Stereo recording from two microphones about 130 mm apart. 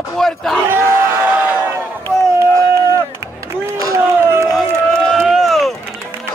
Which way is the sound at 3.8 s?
25° right (ahead or behind).